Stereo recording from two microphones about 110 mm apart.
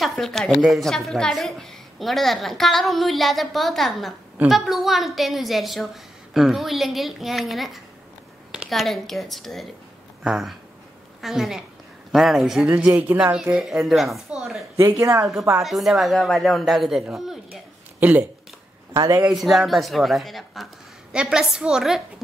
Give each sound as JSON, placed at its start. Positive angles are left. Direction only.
{"t": 0.0, "sound": "a woman's voice", "side_deg": 5}
{"t": 12.6, "sound": "a woman's voice", "side_deg": -15}
{"t": 14.9, "sound": "speech", "side_deg": -25}
{"t": 15.6, "sound": "a woman's voice", "side_deg": 0}
{"t": 18.9, "sound": "speech", "side_deg": -30}
{"t": 19.2, "sound": "a woman's voice", "side_deg": 0}